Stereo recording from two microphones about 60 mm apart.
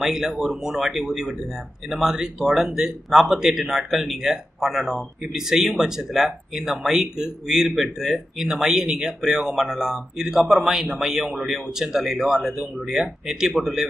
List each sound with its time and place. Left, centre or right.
0.0 s speech: centre